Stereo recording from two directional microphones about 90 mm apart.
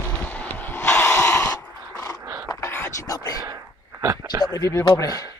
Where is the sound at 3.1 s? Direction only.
45° left (ahead or behind).